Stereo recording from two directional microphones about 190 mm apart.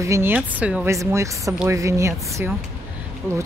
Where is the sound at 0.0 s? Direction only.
15° right (ahead or behind).